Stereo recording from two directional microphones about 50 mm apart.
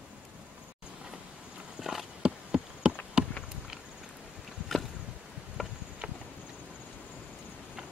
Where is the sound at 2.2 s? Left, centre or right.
Centre.